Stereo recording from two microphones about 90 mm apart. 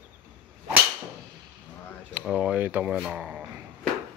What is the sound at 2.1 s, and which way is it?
Speech, 15° right (ahead or behind).